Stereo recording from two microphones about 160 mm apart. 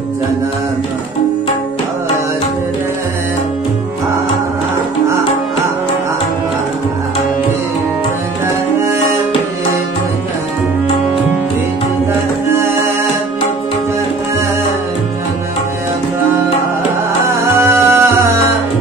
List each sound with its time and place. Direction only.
17.4 s music: 15° right (ahead or behind)